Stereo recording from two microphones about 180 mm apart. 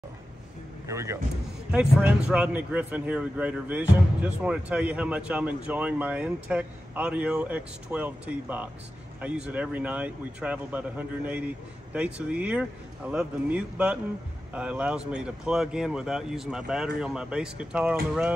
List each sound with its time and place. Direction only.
0.8 s speech: 15° right (ahead or behind)